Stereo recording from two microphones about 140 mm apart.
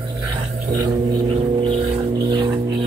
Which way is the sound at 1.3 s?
40° right (ahead or behind).